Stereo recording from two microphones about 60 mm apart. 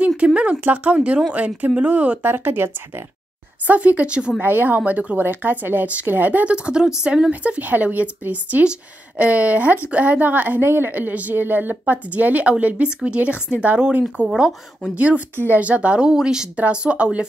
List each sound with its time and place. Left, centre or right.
0.2 s a woman's voice: centre
2.2 s speech: right
3.6 s a woman's voice: right
4.4 s speech: right
6.5 s a woman's voice: centre
14.3 s speech: centre
15.0 s a woman's voice: right